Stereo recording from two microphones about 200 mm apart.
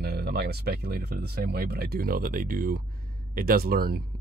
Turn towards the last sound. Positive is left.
turn(degrees=-50)  # may be behind; listen again after turning